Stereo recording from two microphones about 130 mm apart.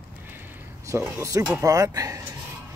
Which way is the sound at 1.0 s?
20° right (ahead or behind).